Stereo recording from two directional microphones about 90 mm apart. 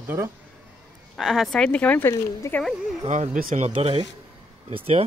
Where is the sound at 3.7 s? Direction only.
90° right.